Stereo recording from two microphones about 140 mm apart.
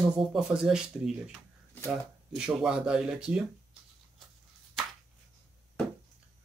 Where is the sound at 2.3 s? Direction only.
5° right (ahead or behind).